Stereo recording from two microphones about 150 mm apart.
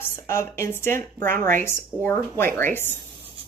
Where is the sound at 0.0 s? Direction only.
20° left (ahead or behind).